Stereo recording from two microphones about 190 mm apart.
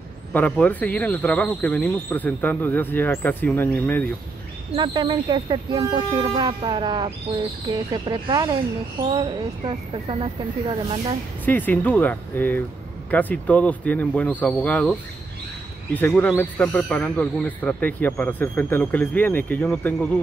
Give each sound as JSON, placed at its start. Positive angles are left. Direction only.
{"t": 0.3, "sound": "speech", "side_deg": 10}
{"t": 4.7, "sound": "speech", "side_deg": -25}
{"t": 11.4, "sound": "speech", "side_deg": 10}